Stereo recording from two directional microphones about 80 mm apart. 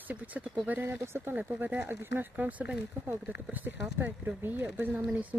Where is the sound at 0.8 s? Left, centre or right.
Right.